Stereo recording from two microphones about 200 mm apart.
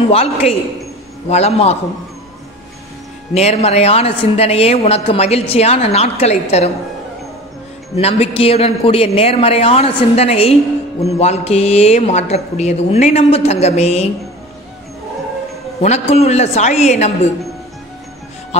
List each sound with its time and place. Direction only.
0.1 s a man's voice: 30° left (ahead or behind)
3.3 s a man's voice: 30° left (ahead or behind)
8.0 s a man's voice: 30° left (ahead or behind)
15.8 s a man's voice: 35° left (ahead or behind)